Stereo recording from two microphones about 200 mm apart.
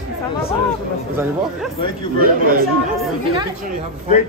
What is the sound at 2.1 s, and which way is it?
Speech, 50° right (ahead or behind).